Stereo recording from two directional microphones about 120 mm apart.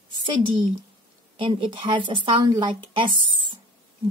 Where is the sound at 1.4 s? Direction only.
45° right (ahead or behind).